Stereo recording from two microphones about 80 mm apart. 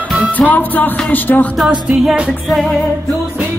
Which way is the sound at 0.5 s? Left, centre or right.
Left.